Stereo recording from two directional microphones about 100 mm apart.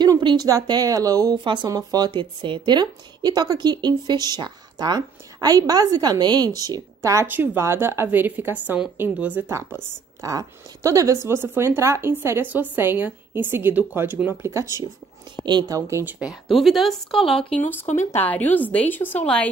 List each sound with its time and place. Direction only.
0.0 s a sound: 50° right (ahead or behind)
0.7 s speech: 40° right (ahead or behind)
1.4 s speech: 50° right (ahead or behind)
1.7 s speech: 40° right (ahead or behind)
15.4 s speech: 45° right (ahead or behind)
15.9 s speech: 25° right (ahead or behind)
16.2 s speech: centre (ahead or behind)
17.6 s a woman's voice: 20° left (ahead or behind)